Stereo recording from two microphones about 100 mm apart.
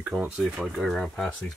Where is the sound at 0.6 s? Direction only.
Centre (ahead or behind).